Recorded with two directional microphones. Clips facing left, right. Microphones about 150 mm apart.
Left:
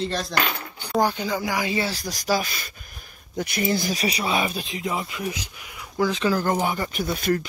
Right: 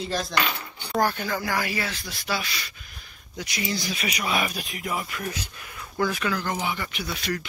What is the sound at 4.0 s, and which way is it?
Speech, 30° left (ahead or behind).